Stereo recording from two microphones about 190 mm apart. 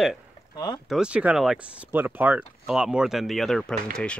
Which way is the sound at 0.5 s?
25° left (ahead or behind).